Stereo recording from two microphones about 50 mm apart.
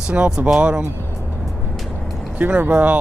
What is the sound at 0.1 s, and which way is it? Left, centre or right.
Speech, right.